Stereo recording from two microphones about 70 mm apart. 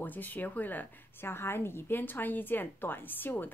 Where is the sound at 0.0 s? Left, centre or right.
Left.